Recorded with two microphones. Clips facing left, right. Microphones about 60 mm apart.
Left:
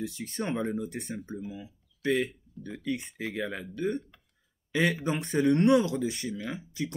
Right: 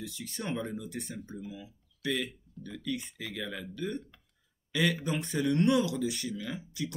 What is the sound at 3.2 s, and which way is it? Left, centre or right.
Speech, left.